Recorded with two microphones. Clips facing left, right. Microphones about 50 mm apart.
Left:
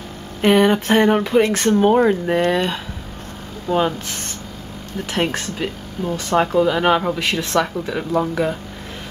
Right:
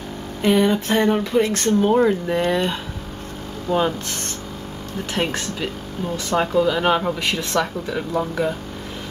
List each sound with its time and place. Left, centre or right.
0.4 s speech: left
1.7 s speech: left
2.0 s speech: centre
2.4 s speech: centre
5.1 s speech: centre